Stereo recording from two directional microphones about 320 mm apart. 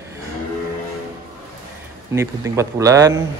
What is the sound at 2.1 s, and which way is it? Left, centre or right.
A man's voice, centre.